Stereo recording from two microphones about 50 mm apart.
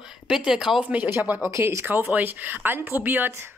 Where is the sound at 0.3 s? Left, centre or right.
Centre.